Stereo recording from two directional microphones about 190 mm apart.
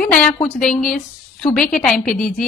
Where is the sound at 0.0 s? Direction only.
5° left (ahead or behind).